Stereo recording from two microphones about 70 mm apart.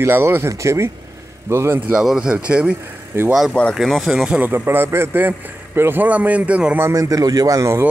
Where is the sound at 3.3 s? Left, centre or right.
Centre.